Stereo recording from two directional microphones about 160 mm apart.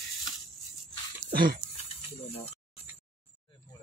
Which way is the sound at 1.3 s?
65° right (ahead or behind).